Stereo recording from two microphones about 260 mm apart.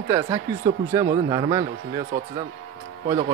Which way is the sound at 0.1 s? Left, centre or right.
Centre.